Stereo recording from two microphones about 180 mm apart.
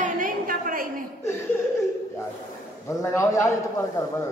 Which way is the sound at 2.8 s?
15° left (ahead or behind).